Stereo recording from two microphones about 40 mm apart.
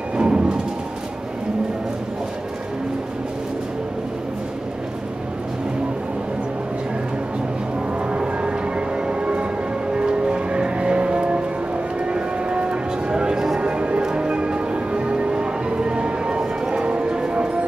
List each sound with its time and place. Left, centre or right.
0.1 s music: right
8.2 s train: right
9.9 s music: right
12.1 s a sound: right
13.6 s music: right